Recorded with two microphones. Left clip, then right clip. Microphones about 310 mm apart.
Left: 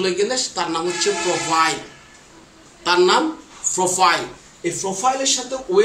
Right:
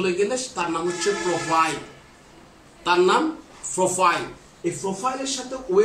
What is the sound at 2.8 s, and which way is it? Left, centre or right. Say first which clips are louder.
Speech: left 3 dB; centre.